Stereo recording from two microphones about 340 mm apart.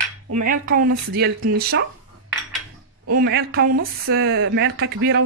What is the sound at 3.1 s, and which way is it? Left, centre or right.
Speech, right.